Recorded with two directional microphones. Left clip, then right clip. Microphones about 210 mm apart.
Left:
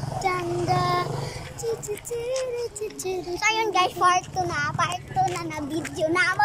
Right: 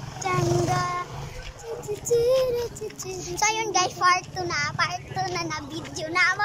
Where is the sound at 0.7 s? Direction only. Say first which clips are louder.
Left 3 dB; 20° left (ahead or behind).